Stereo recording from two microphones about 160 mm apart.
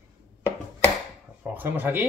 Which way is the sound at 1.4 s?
10° right (ahead or behind).